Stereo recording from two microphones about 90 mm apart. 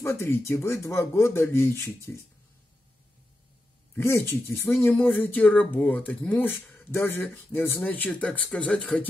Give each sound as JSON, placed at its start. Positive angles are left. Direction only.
{"t": 0.0, "sound": "speech", "side_deg": 25}
{"t": 3.9, "sound": "speech", "side_deg": 30}